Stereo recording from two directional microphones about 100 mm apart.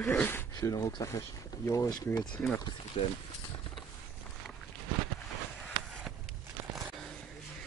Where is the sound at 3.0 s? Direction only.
90° left.